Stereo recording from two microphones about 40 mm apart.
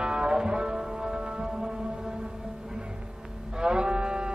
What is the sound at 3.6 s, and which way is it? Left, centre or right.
Music, right.